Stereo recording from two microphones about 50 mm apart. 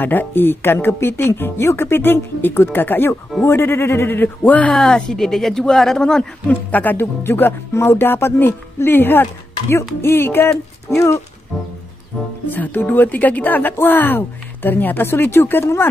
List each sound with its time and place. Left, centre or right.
0.0 s speech: left
1.4 s speech: left
4.6 s speech: centre
6.4 s speech: left
7.0 s speech: left
7.7 s music: left
8.0 s speech: left
9.2 s speech: left
10.0 s speech: left
10.9 s speech: left
11.5 s music: centre
12.4 s speech: left
15.0 s speech: left